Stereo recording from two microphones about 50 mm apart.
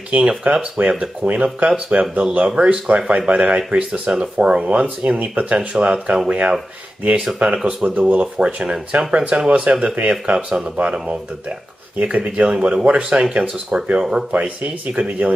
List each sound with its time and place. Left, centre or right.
0.1 s speech: right
15.0 s speech: right